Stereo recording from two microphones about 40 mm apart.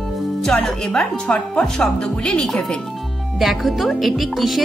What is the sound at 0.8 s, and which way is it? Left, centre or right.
Speech, centre.